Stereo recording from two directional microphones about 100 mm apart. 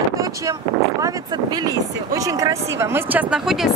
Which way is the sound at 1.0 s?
40° right (ahead or behind).